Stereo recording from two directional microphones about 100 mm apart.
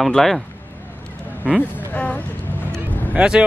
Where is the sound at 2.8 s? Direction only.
10° right (ahead or behind).